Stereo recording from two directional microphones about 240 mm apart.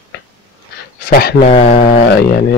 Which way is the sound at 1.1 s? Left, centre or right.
Left.